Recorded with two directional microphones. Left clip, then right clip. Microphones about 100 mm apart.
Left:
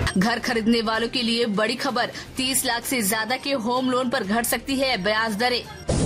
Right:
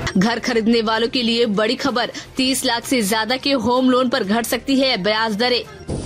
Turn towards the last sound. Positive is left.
turn(degrees=-20)  # may be behind; listen again after turning